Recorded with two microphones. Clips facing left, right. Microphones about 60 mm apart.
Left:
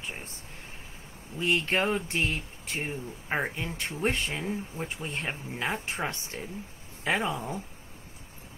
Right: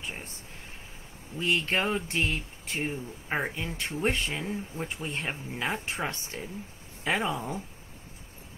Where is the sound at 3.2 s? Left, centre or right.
Centre.